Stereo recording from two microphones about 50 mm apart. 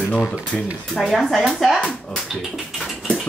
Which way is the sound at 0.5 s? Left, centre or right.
Centre.